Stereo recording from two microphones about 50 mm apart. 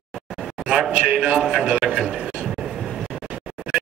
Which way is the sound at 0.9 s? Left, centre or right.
Centre.